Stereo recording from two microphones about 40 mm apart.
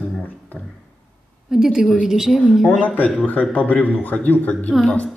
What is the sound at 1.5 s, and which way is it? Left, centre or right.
A woman's voice, centre.